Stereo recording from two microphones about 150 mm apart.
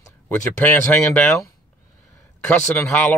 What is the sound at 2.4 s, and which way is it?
Speech, 15° left (ahead or behind).